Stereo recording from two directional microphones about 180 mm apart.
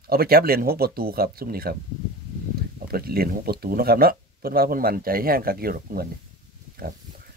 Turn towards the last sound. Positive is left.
turn(degrees=-55)  # may be behind; listen again after turning